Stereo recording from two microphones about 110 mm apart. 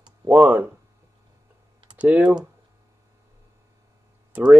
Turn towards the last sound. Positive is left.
turn(degrees=-10)  # may be behind; listen again after turning